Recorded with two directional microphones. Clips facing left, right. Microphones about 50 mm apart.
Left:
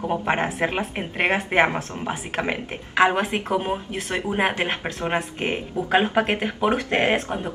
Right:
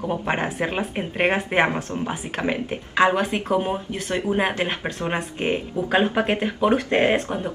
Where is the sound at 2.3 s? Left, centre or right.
Left.